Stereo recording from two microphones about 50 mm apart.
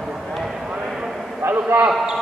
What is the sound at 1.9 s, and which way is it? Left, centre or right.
Speech, centre.